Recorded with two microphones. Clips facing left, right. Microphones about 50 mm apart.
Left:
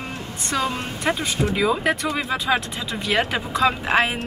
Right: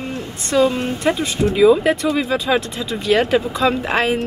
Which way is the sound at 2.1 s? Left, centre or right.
Left.